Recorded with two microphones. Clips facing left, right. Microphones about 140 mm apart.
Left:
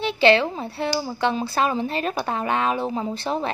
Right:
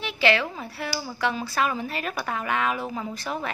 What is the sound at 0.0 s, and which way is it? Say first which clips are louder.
A woman's voice: left 6 dB; 30° left (ahead or behind).